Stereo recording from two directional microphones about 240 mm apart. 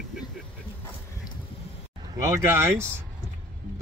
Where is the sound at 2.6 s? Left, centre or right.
Centre.